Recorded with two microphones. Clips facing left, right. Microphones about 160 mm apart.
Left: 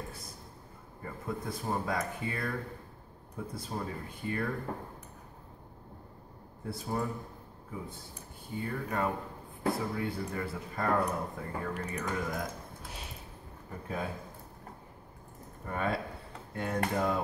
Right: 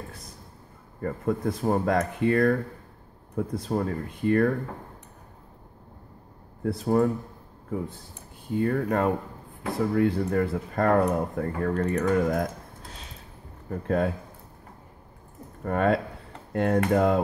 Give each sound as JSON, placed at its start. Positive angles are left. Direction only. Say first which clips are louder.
{"t": 1.0, "sound": "speech", "louder": "right 11 dB", "side_deg": -55}
{"t": 6.6, "sound": "speech", "louder": "right 12 dB", "side_deg": -60}
{"t": 8.5, "sound": "speech", "louder": "right 10 dB", "side_deg": -60}
{"t": 12.8, "sound": "a sound", "louder": "right 1 dB", "side_deg": 5}
{"t": 13.7, "sound": "speech", "louder": "right 12 dB", "side_deg": -65}
{"t": 15.6, "sound": "speech", "louder": "right 10 dB", "side_deg": -65}